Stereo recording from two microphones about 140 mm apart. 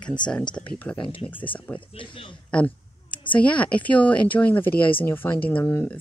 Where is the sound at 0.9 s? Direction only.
40° left (ahead or behind).